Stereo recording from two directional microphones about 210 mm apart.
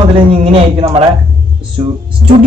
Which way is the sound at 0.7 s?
30° right (ahead or behind).